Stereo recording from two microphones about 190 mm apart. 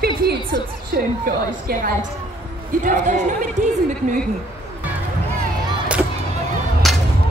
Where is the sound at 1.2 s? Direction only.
50° right (ahead or behind).